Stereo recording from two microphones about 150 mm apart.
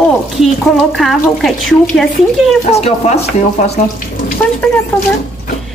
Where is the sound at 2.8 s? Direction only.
45° left (ahead or behind).